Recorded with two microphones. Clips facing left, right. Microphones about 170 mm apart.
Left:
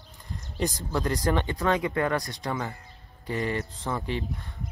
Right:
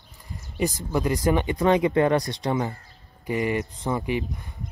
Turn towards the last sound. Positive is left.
turn(degrees=-15)  # may be behind; listen again after turning